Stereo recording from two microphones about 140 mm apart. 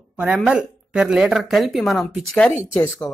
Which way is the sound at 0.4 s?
5° right (ahead or behind).